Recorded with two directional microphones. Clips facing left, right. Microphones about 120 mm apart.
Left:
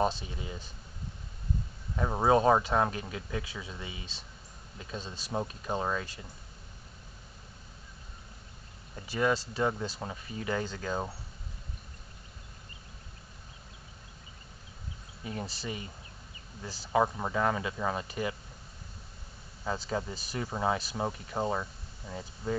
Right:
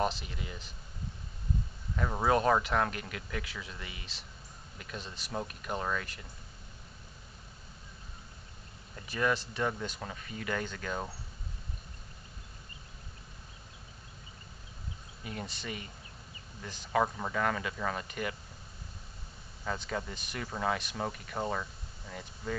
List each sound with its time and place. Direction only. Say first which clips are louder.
0.0 s speech: left 3 dB; 25° left (ahead or behind)
2.0 s speech: left 3 dB; 20° left (ahead or behind)
9.0 s speech: left 2 dB; 30° left (ahead or behind)
15.2 s speech: left 3 dB; 35° left (ahead or behind)
16.9 s speech: left 2 dB; 20° left (ahead or behind)
19.6 s speech: left 3 dB; 25° left (ahead or behind)